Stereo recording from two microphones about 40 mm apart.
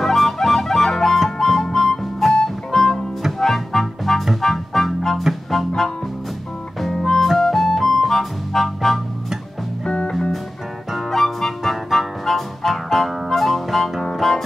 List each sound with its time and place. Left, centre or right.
0.0 s music: centre
6.9 s music: centre
9.8 s music: left
11.0 s music: centre